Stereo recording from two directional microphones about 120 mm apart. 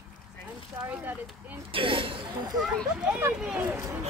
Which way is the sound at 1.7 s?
45° right (ahead or behind).